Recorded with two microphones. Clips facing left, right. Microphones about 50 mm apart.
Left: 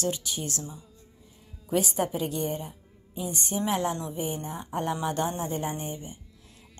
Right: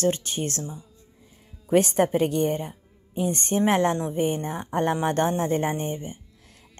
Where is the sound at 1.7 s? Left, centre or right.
Right.